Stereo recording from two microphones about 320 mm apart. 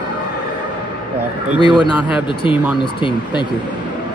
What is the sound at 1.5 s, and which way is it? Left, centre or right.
Speech, centre.